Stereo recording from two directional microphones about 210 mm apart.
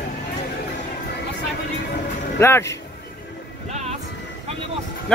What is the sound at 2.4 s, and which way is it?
Speech, 10° left (ahead or behind).